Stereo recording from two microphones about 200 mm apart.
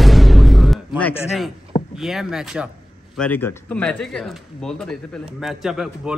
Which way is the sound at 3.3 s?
10° left (ahead or behind).